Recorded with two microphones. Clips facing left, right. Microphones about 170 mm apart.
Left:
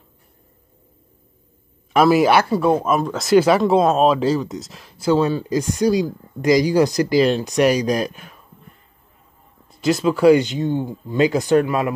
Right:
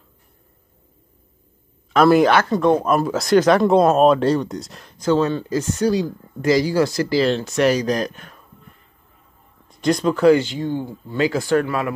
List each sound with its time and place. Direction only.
2.0 s speech: 5° left (ahead or behind)
9.7 s speech: 5° left (ahead or behind)